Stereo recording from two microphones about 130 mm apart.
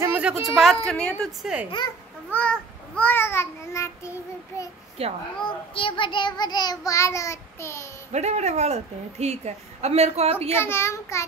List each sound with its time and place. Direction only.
0.1 s a woman's voice: 10° right (ahead or behind); by 1.1 s 5° left (ahead or behind)
1.2 s a woman's voice: 5° right (ahead or behind)
2.3 s child singing: 10° left (ahead or behind)
5.0 s a child's voice: 50° right (ahead or behind)
5.4 s child singing: 40° left (ahead or behind); by 7.9 s 20° left (ahead or behind)
8.1 s a woman's voice: 60° right (ahead or behind)
10.5 s a child's voice: 20° left (ahead or behind)